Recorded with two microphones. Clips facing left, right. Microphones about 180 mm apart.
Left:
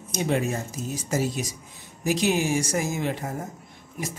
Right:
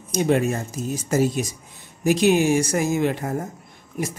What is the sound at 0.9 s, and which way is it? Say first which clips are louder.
A man's voice: right 6 dB; 50° right (ahead or behind).